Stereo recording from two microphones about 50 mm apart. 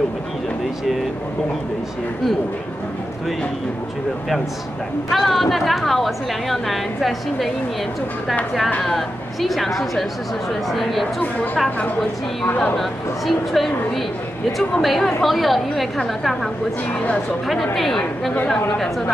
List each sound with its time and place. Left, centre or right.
5.1 s a woman's voice: centre
8.8 s a woman's voice: centre
13.3 s a woman's voice: centre
17.7 s a woman's voice: centre